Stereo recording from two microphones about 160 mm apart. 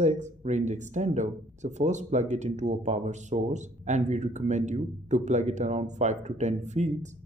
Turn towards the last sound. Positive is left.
turn(degrees=-50)  # may be behind; listen again after turning